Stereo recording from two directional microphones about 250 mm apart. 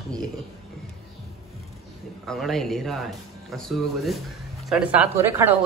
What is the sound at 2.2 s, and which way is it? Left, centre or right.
Speech, centre.